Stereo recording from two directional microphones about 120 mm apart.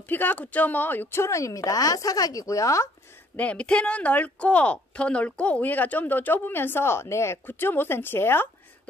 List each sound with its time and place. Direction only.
0.0 s speech: 15° left (ahead or behind)
3.3 s speech: 10° left (ahead or behind)